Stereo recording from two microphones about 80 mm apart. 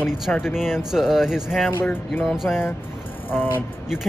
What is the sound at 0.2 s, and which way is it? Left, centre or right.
Speech, centre.